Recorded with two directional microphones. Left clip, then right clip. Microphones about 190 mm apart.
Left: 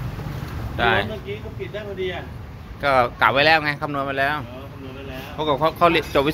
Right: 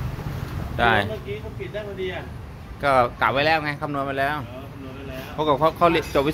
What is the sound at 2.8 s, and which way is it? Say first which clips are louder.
Speech: left 1 dB; 20° right (ahead or behind).